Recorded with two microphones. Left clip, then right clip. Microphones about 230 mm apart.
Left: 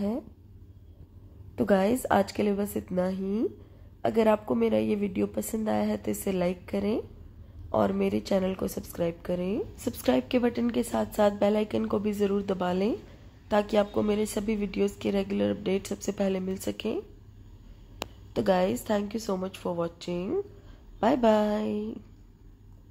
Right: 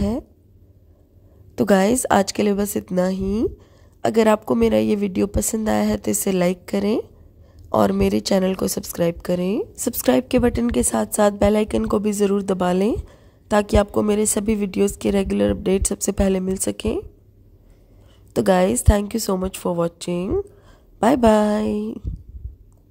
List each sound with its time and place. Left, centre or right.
1.5 s a woman's voice: right
18.3 s a woman's voice: right